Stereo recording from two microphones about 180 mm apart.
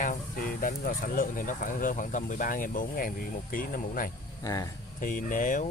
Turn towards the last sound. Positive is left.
turn(degrees=45)  # may be behind; listen again after turning